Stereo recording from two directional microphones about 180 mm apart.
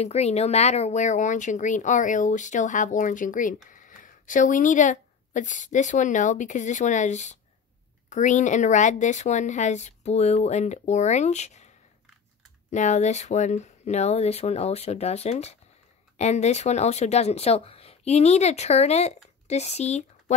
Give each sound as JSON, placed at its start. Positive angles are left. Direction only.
{"t": 0.0, "sound": "a woman's voice", "side_deg": 35}
{"t": 12.7, "sound": "a woman's voice", "side_deg": 40}